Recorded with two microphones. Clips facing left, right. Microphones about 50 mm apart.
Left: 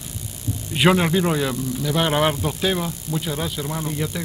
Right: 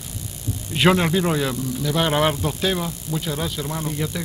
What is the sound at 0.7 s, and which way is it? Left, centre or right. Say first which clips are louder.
Speech: even; centre.